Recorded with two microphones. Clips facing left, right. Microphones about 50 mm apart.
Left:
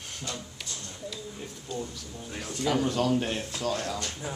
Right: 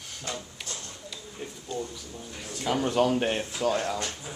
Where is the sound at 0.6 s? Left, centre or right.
Centre.